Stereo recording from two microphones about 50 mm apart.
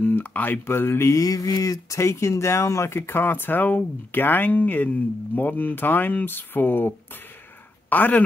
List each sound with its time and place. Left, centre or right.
0.0 s speech: left
0.7 s speech: left
1.9 s speech: left
3.1 s speech: left
7.9 s speech: left